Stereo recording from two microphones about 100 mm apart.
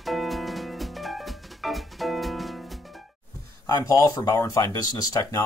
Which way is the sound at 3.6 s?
35° left (ahead or behind).